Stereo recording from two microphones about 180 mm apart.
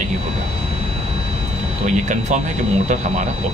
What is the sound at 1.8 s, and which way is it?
Speech, 40° right (ahead or behind).